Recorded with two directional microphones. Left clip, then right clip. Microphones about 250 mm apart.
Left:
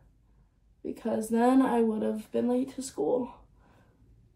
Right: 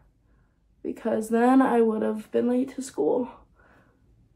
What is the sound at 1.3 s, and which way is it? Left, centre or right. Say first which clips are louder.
Speech: right 4 dB; centre.